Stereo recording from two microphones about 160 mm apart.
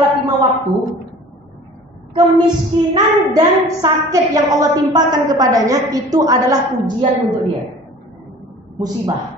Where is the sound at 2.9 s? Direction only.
25° right (ahead or behind).